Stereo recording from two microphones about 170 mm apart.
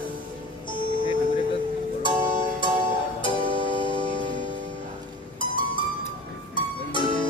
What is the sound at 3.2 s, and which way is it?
Music, 30° left (ahead or behind).